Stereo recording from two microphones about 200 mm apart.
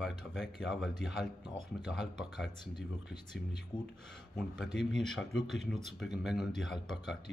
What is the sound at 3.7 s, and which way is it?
Speech, 20° left (ahead or behind).